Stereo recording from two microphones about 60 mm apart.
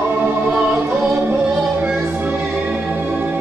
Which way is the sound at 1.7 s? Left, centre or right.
Right.